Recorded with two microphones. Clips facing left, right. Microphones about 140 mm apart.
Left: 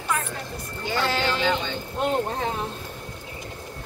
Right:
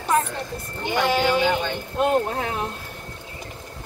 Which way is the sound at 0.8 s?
15° right (ahead or behind).